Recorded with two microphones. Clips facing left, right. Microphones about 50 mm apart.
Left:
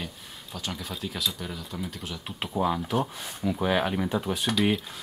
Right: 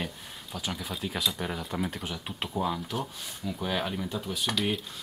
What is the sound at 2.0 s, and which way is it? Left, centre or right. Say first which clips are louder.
Speech: even; centre.